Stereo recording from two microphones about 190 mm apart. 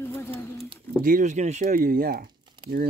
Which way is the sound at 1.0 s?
45° right (ahead or behind).